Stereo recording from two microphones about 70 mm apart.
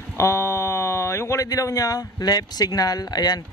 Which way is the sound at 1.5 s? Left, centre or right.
Left.